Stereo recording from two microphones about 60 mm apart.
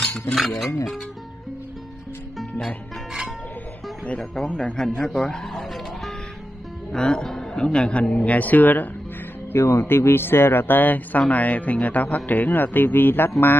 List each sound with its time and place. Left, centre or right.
0.3 s speech: centre
4.4 s speech: centre
4.7 s music: centre
6.9 s speech: centre; by 8.8 s left
9.5 s speech: left